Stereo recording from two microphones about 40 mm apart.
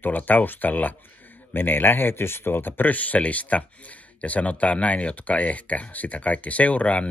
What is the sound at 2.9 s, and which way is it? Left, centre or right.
Speech, left.